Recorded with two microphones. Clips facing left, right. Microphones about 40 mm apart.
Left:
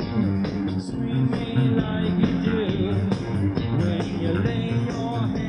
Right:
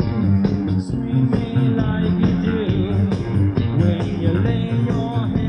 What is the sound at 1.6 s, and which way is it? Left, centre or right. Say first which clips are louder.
Music: right 1 dB; left.